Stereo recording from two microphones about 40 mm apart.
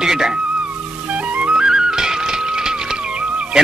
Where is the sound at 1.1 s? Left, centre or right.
Right.